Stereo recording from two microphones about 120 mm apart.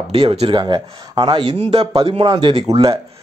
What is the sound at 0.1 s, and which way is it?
Speech, 50° right (ahead or behind).